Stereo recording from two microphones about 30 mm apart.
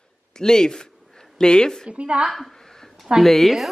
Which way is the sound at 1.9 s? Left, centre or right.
Right.